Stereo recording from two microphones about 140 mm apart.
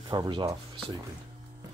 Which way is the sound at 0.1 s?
30° right (ahead or behind).